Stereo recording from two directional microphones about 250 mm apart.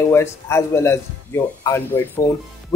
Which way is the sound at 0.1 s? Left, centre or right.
Centre.